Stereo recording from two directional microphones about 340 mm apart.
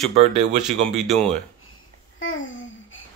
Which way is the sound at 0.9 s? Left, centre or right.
Centre.